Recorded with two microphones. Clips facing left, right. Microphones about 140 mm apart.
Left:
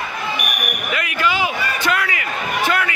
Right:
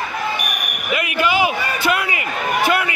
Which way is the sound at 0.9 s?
20° right (ahead or behind).